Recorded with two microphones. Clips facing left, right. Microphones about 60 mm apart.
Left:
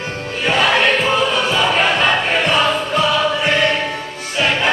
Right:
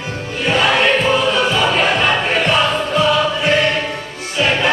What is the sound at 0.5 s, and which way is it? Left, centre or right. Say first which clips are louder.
Choir: even; centre.